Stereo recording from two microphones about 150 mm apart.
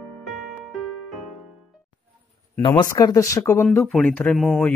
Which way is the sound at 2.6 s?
30° left (ahead or behind).